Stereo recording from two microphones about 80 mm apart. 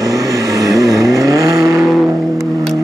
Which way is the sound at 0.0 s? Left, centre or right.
Right.